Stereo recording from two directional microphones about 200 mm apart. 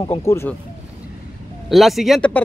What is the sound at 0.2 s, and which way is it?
Speech, 15° left (ahead or behind).